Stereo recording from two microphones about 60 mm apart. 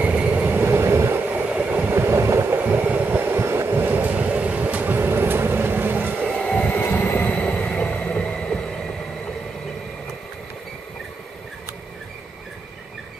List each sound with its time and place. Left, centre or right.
0.0 s train: right
0.6 s train: right
1.5 s train: right
2.0 s train: right
2.6 s train: right
3.8 s train: right
6.2 s train: centre
6.7 s train: left; by 8.7 s centre